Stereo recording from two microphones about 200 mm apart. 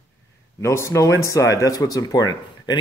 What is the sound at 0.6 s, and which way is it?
Speech, 15° left (ahead or behind).